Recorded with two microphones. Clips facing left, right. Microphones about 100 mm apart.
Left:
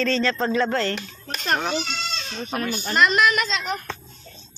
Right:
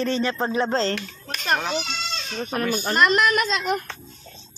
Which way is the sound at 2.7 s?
45° right (ahead or behind).